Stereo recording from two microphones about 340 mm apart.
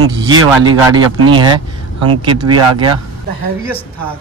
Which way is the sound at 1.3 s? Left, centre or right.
Centre.